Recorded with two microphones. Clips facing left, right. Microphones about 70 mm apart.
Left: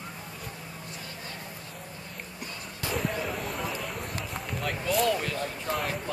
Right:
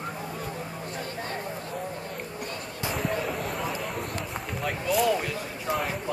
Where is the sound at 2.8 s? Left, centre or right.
Centre.